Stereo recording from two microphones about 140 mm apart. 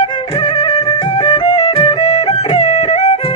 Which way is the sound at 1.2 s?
45° left (ahead or behind).